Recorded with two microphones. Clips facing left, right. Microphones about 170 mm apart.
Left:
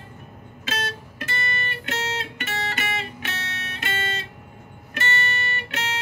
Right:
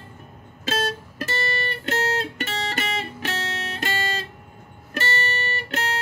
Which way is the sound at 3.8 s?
40° right (ahead or behind).